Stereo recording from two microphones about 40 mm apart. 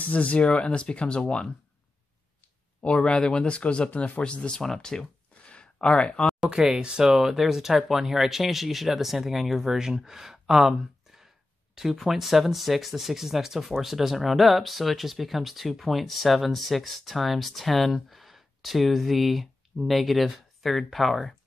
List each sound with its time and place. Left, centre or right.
0.0 s speech: left
2.8 s speech: left
5.4 s a sound: left
6.5 s speech: centre
7.2 s speech: centre